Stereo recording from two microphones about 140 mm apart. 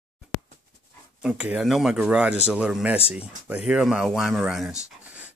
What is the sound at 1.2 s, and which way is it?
Speech, 5° right (ahead or behind).